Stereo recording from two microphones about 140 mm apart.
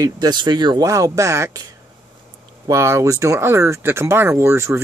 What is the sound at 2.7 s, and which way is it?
Speech, 20° right (ahead or behind).